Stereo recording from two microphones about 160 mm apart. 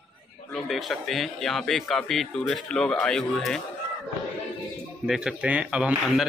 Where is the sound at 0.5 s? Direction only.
Centre (ahead or behind).